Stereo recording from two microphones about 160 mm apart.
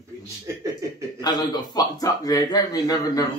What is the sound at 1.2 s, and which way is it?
A man's voice, 25° left (ahead or behind).